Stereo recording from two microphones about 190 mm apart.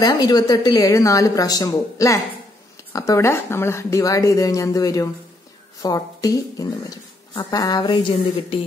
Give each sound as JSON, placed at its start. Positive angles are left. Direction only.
{"t": 0.0, "sound": "a woman's voice", "side_deg": 20}